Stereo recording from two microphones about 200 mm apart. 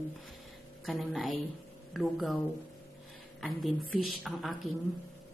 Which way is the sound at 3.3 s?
Centre (ahead or behind).